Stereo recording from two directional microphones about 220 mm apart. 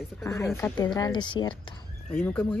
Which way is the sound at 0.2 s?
10° left (ahead or behind).